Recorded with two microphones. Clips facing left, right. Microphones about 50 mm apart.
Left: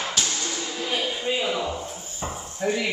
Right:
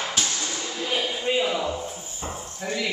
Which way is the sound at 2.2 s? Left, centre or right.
Centre.